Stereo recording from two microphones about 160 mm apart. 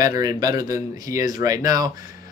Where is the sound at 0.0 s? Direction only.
20° right (ahead or behind).